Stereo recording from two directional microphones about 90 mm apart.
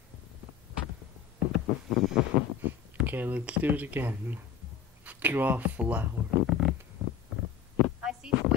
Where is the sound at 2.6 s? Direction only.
20° right (ahead or behind).